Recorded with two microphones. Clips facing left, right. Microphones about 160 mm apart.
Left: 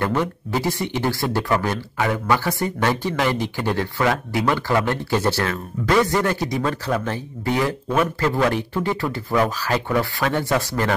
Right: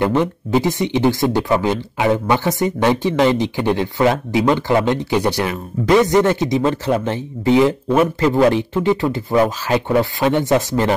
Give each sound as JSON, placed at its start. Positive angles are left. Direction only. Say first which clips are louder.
{"t": 0.0, "sound": "speech", "louder": "right 5 dB", "side_deg": -20}